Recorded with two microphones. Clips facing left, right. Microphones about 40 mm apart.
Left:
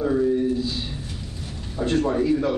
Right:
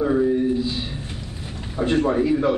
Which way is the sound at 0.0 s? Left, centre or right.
Centre.